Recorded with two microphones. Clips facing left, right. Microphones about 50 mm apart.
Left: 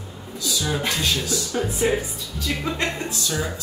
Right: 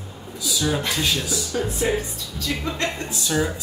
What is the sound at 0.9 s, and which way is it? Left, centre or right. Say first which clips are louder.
Speech: even; centre.